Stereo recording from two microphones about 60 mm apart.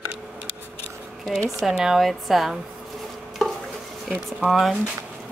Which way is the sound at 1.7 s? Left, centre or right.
Centre.